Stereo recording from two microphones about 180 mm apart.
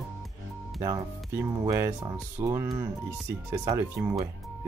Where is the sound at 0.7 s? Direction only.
20° right (ahead or behind).